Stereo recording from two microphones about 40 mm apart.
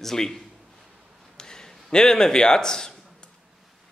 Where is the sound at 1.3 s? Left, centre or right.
Centre.